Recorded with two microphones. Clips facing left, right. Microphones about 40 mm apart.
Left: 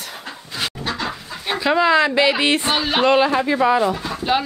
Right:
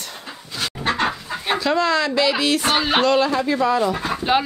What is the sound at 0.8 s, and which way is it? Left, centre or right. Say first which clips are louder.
Chicken: right 7 dB; right.